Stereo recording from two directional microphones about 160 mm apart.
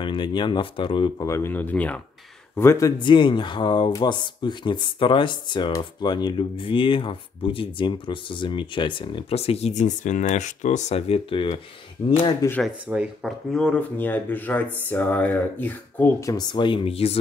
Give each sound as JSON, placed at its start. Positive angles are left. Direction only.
{"t": 0.0, "sound": "speech", "side_deg": 30}
{"t": 1.2, "sound": "speech", "side_deg": 15}
{"t": 3.0, "sound": "speech", "side_deg": 30}
{"t": 12.6, "sound": "speech", "side_deg": -5}